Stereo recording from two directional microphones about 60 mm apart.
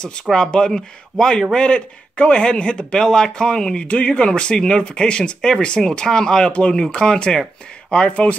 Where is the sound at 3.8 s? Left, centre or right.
Left.